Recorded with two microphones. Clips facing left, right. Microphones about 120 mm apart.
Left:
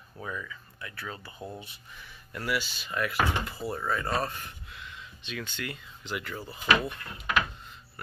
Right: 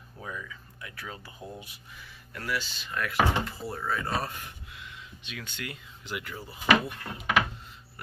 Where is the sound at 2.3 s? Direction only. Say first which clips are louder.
Left 2 dB; 10° left (ahead or behind); by 6.4 s 10° right (ahead or behind).